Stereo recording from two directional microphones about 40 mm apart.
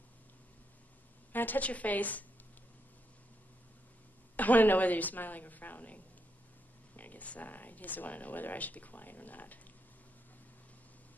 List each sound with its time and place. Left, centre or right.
1.3 s a sound: left
1.6 s a woman's voice: left
4.4 s speech: left